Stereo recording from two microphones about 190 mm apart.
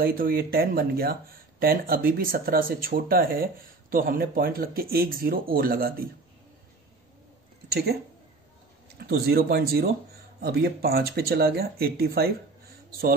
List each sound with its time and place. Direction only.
0.0 s speech: 50° right (ahead or behind)
7.7 s speech: 55° right (ahead or behind)